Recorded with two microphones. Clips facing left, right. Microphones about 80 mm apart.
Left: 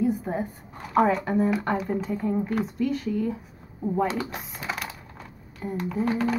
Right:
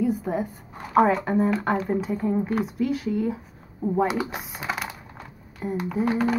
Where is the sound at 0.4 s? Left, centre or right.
Centre.